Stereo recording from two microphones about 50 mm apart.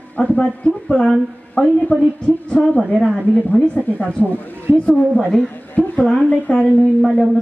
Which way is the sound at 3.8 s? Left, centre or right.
Left.